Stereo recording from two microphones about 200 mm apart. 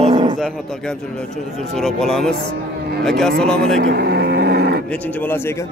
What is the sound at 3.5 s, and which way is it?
Speech, 55° right (ahead or behind).